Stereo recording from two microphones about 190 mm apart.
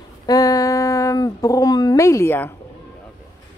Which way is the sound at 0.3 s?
20° left (ahead or behind).